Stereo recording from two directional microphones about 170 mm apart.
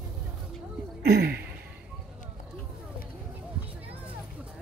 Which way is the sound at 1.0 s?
75° right (ahead or behind).